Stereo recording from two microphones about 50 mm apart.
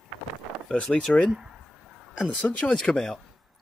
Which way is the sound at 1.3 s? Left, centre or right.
Centre.